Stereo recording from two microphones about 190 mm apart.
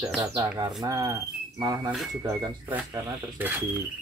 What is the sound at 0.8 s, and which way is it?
Cricket, 20° right (ahead or behind).